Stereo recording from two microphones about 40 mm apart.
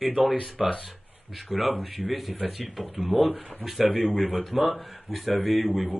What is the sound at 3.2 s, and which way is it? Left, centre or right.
Speech, right.